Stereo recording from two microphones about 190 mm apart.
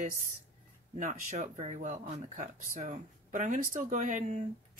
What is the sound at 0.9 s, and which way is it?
Speech, 40° right (ahead or behind).